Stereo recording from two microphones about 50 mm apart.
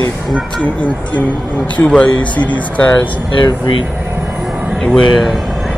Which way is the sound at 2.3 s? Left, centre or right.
Left.